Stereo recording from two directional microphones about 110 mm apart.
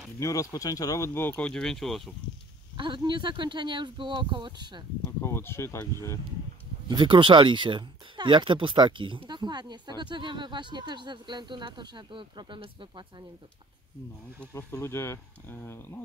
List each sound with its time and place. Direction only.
0.2 s speech: 30° left (ahead or behind)
1.5 s speech: 5° left (ahead or behind)
2.8 s speech: 45° right (ahead or behind)
5.2 s speech: 20° left (ahead or behind)
6.9 s speech: 45° right (ahead or behind)
14.7 s speech: 25° left (ahead or behind)